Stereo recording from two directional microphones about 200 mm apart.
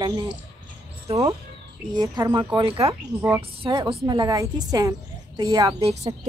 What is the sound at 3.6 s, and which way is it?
Speech, 25° right (ahead or behind).